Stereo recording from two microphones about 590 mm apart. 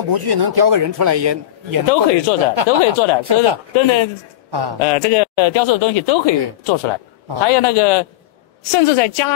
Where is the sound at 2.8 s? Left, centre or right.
Left.